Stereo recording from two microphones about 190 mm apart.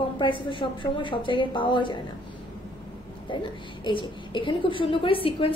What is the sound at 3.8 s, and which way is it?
A woman's voice, 25° left (ahead or behind).